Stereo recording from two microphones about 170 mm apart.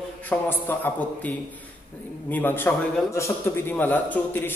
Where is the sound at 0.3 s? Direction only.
10° left (ahead or behind).